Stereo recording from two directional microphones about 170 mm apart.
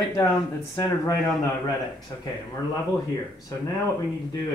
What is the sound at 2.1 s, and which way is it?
Speech, 25° left (ahead or behind).